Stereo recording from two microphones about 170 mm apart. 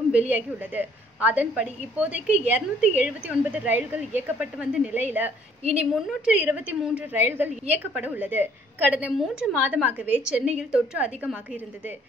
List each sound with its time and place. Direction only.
0.1 s a woman's voice: 10° right (ahead or behind)